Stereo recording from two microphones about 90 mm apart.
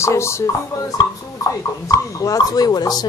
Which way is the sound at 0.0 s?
30° left (ahead or behind).